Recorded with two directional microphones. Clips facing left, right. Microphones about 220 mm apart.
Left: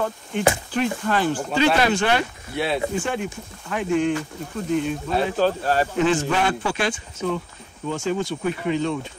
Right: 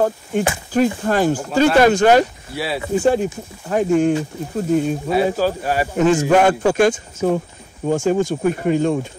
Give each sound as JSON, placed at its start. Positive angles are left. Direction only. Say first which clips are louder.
{"t": 0.0, "sound": "speech", "louder": "right 3 dB", "side_deg": -40}
{"t": 2.5, "sound": "speech", "louder": "left 1 dB", "side_deg": -5}
{"t": 3.0, "sound": "speech", "louder": "right 9 dB", "side_deg": -40}
{"t": 5.1, "sound": "speech", "louder": "right 3 dB", "side_deg": -10}
{"t": 5.9, "sound": "speech", "louder": "right 11 dB", "side_deg": -45}